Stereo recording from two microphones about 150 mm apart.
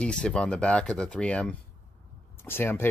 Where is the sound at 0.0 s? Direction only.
5° left (ahead or behind).